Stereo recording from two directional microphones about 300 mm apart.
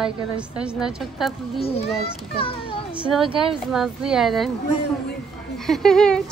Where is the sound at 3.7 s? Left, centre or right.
Centre.